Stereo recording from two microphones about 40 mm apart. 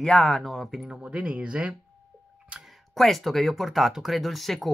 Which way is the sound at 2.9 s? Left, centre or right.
Centre.